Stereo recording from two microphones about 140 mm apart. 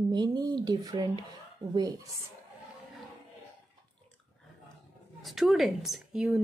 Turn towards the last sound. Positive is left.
turn(degrees=-5)  # may be behind; listen again after turning